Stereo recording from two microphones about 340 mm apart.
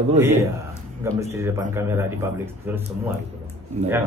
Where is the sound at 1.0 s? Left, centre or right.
Centre.